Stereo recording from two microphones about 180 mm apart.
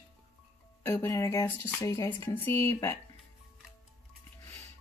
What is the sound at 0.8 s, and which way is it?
Speech, 20° left (ahead or behind).